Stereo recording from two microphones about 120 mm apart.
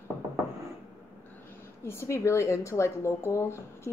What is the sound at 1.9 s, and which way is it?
Speech, 25° left (ahead or behind).